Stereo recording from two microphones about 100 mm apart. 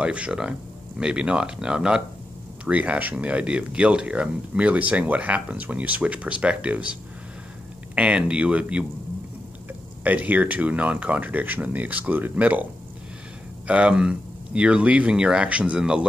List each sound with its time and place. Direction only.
0.0 s speech: 10° right (ahead or behind)
13.7 s speech: 10° right (ahead or behind)